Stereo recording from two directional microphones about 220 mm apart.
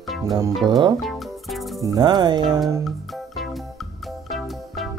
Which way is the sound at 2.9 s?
Centre (ahead or behind).